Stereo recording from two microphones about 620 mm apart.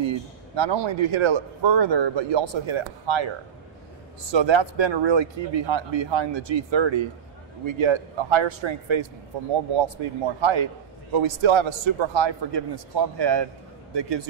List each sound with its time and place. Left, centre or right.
0.0 s speech: right
4.3 s speech: right